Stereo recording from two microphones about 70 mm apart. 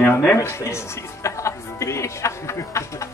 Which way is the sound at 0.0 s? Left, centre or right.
Left.